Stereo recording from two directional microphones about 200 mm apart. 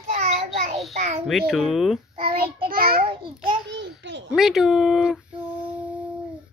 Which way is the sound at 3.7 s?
60° right (ahead or behind).